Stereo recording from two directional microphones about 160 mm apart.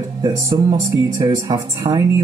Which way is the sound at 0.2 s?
20° right (ahead or behind).